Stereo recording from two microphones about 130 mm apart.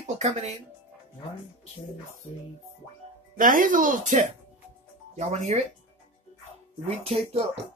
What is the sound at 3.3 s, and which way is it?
Speech, 90° right.